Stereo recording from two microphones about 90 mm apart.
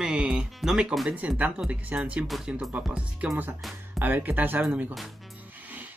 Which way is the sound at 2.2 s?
Centre (ahead or behind).